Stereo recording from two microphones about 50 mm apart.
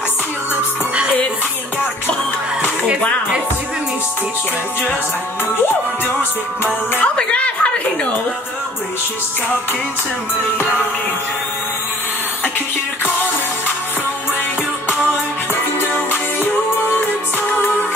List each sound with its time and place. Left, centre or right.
7.0 s a woman's voice: left